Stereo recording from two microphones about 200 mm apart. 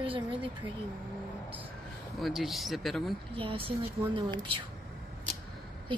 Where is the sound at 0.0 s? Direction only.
25° right (ahead or behind).